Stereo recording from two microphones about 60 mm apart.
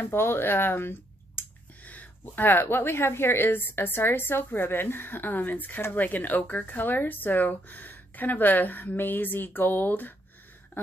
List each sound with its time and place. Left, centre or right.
0.0 s a woman's voice: left